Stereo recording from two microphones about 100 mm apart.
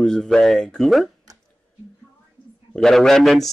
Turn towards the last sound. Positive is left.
turn(degrees=0)  # may be behind; listen again after turning